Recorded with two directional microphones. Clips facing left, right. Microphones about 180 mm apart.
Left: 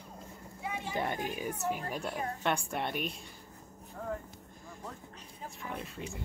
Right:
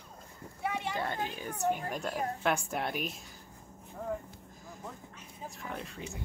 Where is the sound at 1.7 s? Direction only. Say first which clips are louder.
Right 1 dB; centre (ahead or behind).